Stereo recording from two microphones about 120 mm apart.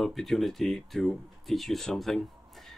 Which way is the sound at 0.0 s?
Centre (ahead or behind).